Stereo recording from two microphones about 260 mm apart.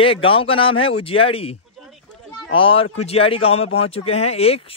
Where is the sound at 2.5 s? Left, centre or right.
Left.